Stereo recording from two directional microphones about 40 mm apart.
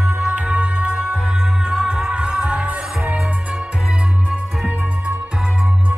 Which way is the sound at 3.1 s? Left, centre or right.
Centre.